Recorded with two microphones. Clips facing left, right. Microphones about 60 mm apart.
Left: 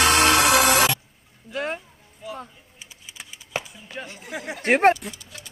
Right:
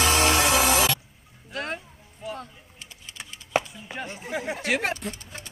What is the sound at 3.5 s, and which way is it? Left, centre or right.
Chop, centre.